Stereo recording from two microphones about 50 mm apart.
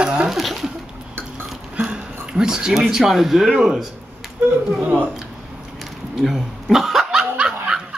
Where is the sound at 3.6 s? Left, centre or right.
Centre.